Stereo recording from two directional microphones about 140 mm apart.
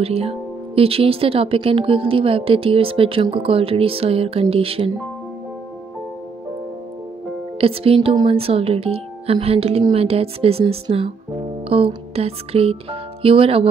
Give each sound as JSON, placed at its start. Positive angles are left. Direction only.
{"t": 0.0, "sound": "speech", "side_deg": -45}
{"t": 7.6, "sound": "speech", "side_deg": -40}